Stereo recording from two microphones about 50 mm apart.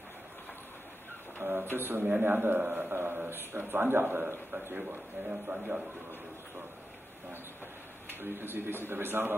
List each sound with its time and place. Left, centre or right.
1.4 s a man's voice: right
4.7 s speech: right
8.1 s a man's voice: right